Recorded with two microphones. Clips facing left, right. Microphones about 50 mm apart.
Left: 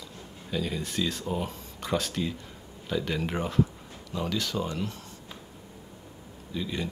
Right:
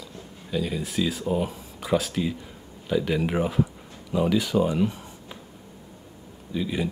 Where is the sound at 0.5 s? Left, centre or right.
Centre.